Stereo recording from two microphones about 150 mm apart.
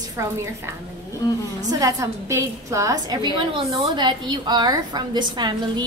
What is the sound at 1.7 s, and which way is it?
A woman's voice, 25° right (ahead or behind).